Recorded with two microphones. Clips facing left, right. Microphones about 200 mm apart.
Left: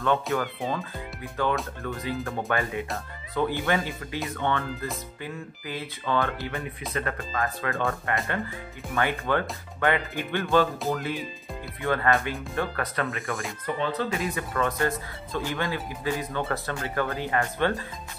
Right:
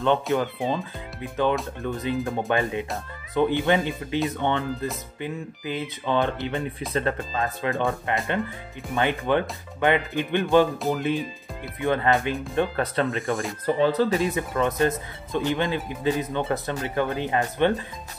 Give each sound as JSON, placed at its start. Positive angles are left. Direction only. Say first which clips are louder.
{"t": 0.0, "sound": "speech", "louder": "right 3 dB", "side_deg": -20}
{"t": 13.0, "sound": "speech", "louder": "right 6 dB", "side_deg": 0}
{"t": 13.7, "sound": "speech", "louder": "right 7 dB", "side_deg": -35}
{"t": 14.3, "sound": "speech", "louder": "right 3 dB", "side_deg": -20}